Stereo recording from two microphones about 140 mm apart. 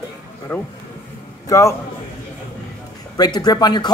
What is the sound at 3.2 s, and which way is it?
Speech, 30° left (ahead or behind).